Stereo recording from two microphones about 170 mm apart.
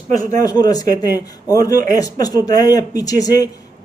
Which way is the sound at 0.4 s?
20° left (ahead or behind).